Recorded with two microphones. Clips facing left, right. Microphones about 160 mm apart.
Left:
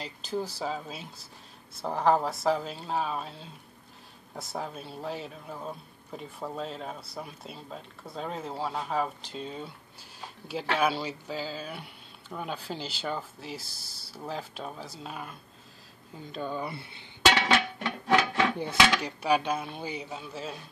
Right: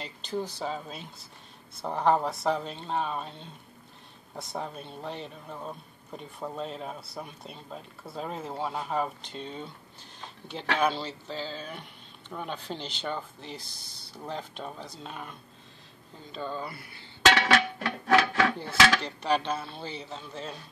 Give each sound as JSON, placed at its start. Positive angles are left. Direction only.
{"t": 0.0, "sound": "a man's voice", "side_deg": 5}
{"t": 16.3, "sound": "speech", "side_deg": 10}
{"t": 16.6, "sound": "a sound", "side_deg": 20}
{"t": 18.0, "sound": "speech", "side_deg": 20}